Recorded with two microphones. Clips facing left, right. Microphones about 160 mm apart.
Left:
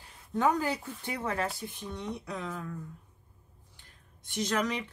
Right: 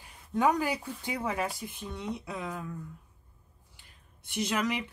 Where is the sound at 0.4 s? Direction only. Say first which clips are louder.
Right 1 dB; 10° right (ahead or behind).